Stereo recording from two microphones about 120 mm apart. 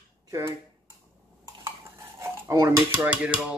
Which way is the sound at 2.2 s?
25° right (ahead or behind).